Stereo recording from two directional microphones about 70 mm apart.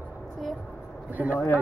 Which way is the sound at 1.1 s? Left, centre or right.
Right.